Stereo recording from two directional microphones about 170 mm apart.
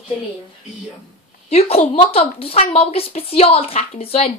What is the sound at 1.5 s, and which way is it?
A woman's voice, 35° left (ahead or behind).